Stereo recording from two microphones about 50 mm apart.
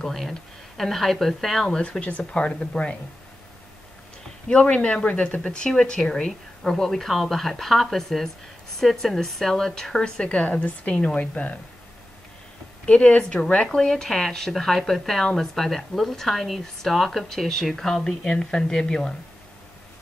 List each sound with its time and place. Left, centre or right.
0.0 s speech: centre
1.7 s speech: left
4.5 s speech: left
12.8 s speech: left